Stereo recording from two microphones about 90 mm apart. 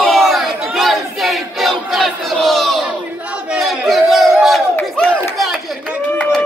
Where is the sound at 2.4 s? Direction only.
5° left (ahead or behind).